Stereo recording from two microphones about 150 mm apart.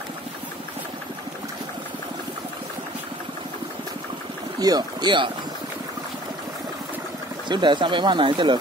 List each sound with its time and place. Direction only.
4.6 s speech: 25° right (ahead or behind)
7.4 s speech: 30° right (ahead or behind)